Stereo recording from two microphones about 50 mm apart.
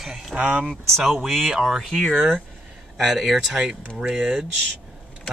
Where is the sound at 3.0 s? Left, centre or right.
Centre.